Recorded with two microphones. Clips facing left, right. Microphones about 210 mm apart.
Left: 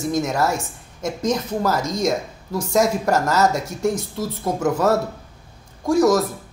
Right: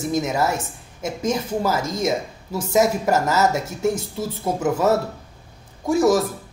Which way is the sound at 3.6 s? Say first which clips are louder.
Even; 25° right (ahead or behind).